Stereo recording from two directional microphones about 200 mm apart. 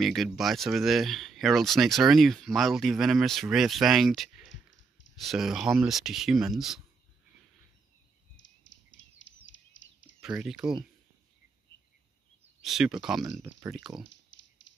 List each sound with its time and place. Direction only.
0.0 s speech: centre (ahead or behind)
8.9 s bird: 70° left (ahead or behind)
10.2 s speech: 5° right (ahead or behind)
12.6 s speech: centre (ahead or behind)
14.0 s a sound: 65° left (ahead or behind)